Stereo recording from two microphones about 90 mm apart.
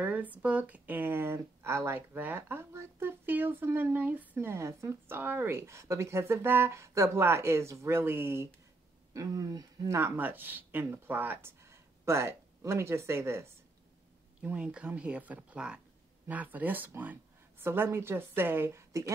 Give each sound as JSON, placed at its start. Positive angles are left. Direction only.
{"t": 0.0, "sound": "speech", "side_deg": -20}
{"t": 9.1, "sound": "speech", "side_deg": -40}
{"t": 9.9, "sound": "speech", "side_deg": -25}
{"t": 14.4, "sound": "speech", "side_deg": -10}